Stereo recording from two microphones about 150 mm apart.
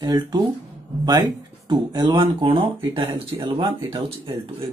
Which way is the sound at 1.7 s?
30° right (ahead or behind).